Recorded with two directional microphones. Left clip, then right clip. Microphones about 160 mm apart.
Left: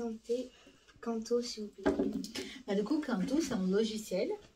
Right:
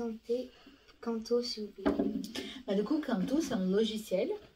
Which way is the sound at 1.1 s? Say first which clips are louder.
Right 2 dB; 20° right (ahead or behind).